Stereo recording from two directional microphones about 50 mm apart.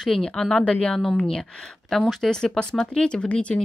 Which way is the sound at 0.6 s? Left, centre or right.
Left.